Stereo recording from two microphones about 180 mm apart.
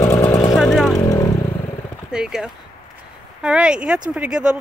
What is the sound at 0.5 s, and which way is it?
Vehicle, centre (ahead or behind).